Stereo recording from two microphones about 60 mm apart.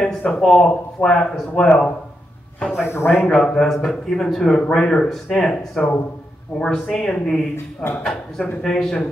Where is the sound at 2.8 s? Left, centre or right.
Left.